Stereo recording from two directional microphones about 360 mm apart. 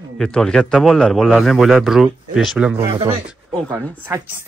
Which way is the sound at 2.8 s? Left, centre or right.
Centre.